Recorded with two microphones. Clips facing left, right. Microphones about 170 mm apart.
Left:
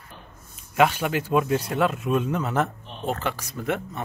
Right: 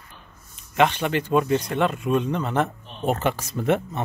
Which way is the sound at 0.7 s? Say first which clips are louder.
Even; 5° left (ahead or behind).